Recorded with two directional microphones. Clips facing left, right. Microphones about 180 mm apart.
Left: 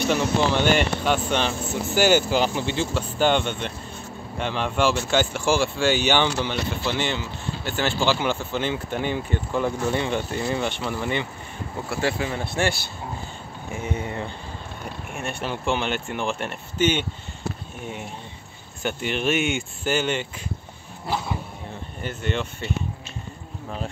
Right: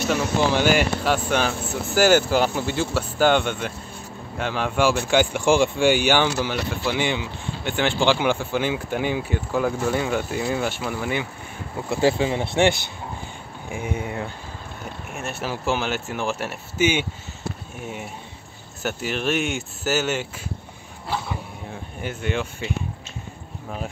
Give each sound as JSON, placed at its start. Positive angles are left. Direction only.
{"t": 0.0, "sound": "speech", "side_deg": 0}
{"t": 11.9, "sound": "speech", "side_deg": -25}
{"t": 22.0, "sound": "speech", "side_deg": -10}